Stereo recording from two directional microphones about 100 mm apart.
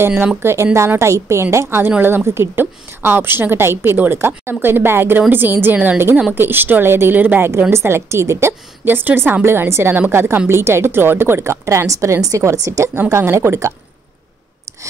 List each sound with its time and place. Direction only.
0.4 s a woman's voice: 25° right (ahead or behind)